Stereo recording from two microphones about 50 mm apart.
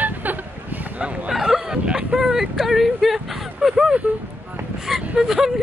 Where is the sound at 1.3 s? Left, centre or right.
Centre.